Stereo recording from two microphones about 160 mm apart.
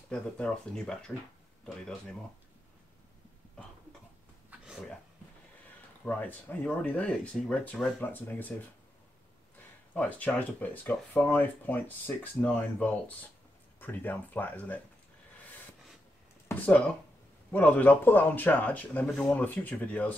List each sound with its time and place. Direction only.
0.1 s speech: 5° left (ahead or behind)
4.5 s a sound: 5° right (ahead or behind)
6.0 s speech: 10° left (ahead or behind)
9.9 s speech: 10° left (ahead or behind)
16.4 s speech: 10° left (ahead or behind)